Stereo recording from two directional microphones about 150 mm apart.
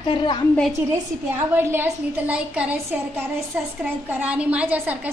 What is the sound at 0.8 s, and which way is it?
A woman's voice, 15° right (ahead or behind).